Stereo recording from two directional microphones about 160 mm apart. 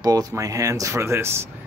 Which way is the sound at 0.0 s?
25° right (ahead or behind).